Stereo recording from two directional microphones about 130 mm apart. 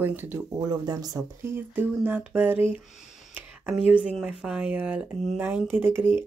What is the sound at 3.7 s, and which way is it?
Speech, 10° right (ahead or behind).